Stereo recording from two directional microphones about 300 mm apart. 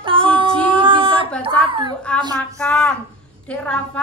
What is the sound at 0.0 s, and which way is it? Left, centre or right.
Female singing, centre.